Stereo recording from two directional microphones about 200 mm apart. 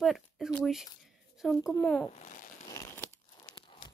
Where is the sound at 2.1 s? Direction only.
35° left (ahead or behind).